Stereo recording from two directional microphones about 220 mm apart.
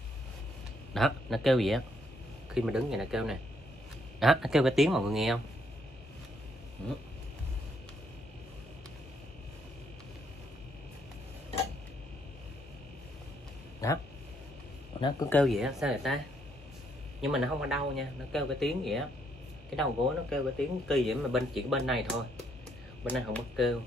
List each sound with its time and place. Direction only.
0.9 s speech: centre (ahead or behind)
13.8 s speech: 15° left (ahead or behind)
15.2 s speech: 5° left (ahead or behind)
17.2 s speech: centre (ahead or behind)
23.0 s speech: 5° left (ahead or behind)